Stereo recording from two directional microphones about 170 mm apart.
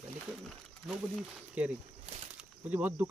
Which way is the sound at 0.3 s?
5° right (ahead or behind).